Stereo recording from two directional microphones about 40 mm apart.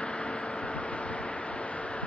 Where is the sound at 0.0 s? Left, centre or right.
Left.